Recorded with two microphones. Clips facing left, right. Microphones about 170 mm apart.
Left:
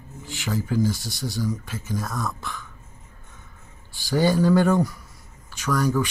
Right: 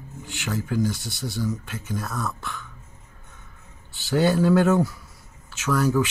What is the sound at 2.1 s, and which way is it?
Speech, 15° left (ahead or behind).